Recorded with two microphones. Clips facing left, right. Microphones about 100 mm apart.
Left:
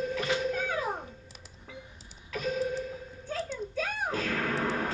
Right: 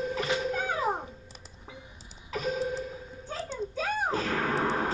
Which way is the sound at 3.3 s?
30° right (ahead or behind).